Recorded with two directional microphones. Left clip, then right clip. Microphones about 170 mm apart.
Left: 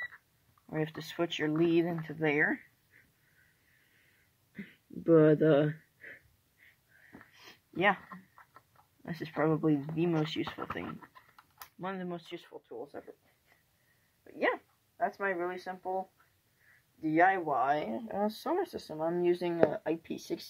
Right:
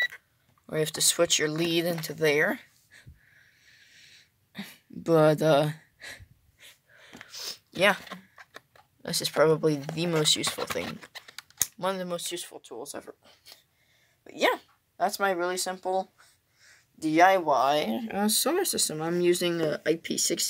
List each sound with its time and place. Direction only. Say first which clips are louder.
0.7 s speech: right 10 dB; 35° right (ahead or behind)
4.6 s a sound: right 5 dB; 35° right (ahead or behind)
7.3 s a sound: right 8 dB; 35° right (ahead or behind)
9.0 s speech: right 9 dB; 30° right (ahead or behind)
11.8 s speech: right 8 dB; 45° right (ahead or behind)
12.7 s speech: right 4 dB; 35° right (ahead or behind)
14.2 s speech: right 6 dB; 25° right (ahead or behind)
17.6 s speech: right 6 dB; 55° right (ahead or behind)
18.0 s speech: right 6 dB; 20° right (ahead or behind)